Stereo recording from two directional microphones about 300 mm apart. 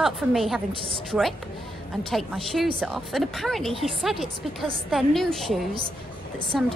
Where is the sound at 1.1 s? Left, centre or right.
Centre.